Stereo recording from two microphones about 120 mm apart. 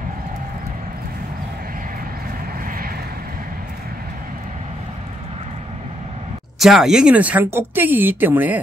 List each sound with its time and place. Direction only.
6.6 s speech: 5° right (ahead or behind)